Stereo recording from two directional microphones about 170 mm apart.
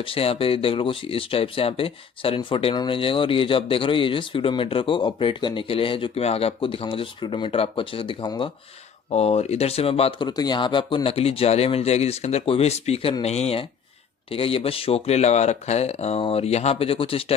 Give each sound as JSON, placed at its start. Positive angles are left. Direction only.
{"t": 0.0, "sound": "speech", "side_deg": 35}
{"t": 9.1, "sound": "speech", "side_deg": 40}